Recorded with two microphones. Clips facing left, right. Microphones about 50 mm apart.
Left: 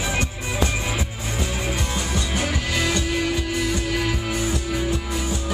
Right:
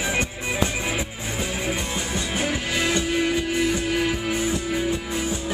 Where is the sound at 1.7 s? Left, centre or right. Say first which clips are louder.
Left 1 dB; centre.